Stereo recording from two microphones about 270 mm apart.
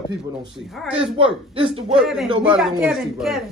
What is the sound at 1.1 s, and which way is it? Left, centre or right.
Speech, centre.